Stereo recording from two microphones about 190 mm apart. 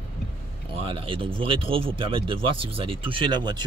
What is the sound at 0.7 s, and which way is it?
Speech, 30° right (ahead or behind).